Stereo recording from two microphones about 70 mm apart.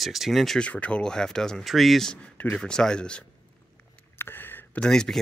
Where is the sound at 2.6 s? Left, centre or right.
Centre.